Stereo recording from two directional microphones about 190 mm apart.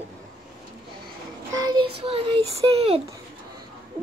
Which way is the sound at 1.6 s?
25° right (ahead or behind).